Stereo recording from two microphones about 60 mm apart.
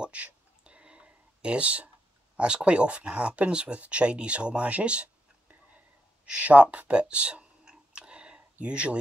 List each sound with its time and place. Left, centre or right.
0.0 s a sound: centre
2.3 s speech: centre
6.2 s clicking: right